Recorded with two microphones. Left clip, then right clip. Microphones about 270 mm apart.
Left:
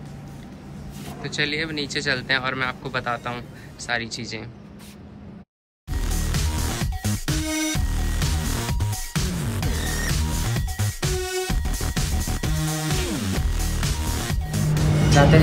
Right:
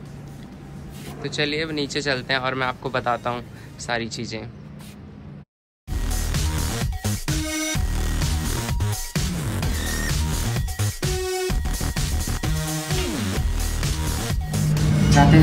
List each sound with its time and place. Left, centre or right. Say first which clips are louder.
1.2 s speech: right 1 dB; centre
6.0 s music: even; centre